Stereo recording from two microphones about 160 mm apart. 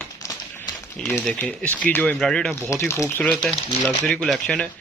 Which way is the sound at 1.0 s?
15° left (ahead or behind).